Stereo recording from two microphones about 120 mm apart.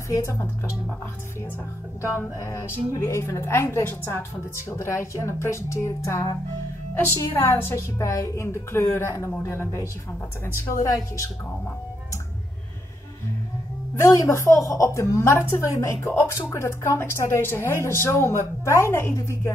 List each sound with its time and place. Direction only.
0.1 s a woman's voice: 25° left (ahead or behind)
2.0 s a woman's voice: 25° left (ahead or behind)
13.9 s a woman's voice: 25° left (ahead or behind)